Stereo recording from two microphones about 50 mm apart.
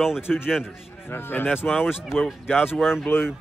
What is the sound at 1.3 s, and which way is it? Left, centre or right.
Speech, left.